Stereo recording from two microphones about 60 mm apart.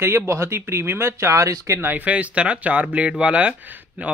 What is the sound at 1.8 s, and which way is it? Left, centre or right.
Speech, right.